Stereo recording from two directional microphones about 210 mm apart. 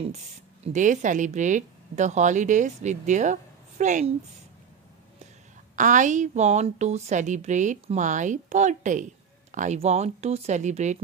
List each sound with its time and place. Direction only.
0.7 s a woman's voice: 35° right (ahead or behind)
5.8 s a woman's voice: 35° right (ahead or behind)